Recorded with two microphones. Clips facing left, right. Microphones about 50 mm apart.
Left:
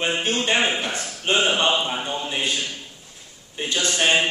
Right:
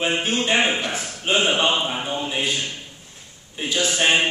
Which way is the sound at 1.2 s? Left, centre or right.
Centre.